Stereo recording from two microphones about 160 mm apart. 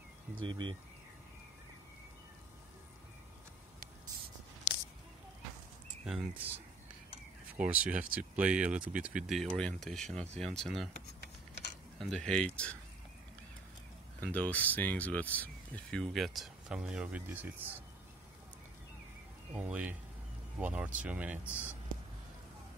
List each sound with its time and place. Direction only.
0.4 s speech: 30° right (ahead or behind)
6.0 s speech: 5° right (ahead or behind)
7.5 s speech: 10° right (ahead or behind)
9.4 s speech: 5° left (ahead or behind)
12.0 s speech: 5° left (ahead or behind)
14.2 s speech: 10° left (ahead or behind); by 17.7 s 10° right (ahead or behind)
19.5 s speech: 10° right (ahead or behind)